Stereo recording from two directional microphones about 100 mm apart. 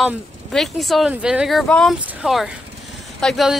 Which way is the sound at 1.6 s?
10° left (ahead or behind).